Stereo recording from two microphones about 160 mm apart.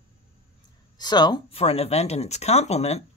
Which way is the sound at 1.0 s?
25° left (ahead or behind).